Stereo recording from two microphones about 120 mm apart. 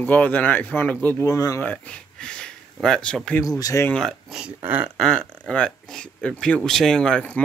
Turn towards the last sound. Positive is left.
turn(degrees=10)  # may be behind; listen again after turning